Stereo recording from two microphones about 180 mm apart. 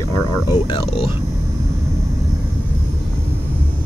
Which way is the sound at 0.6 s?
30° left (ahead or behind).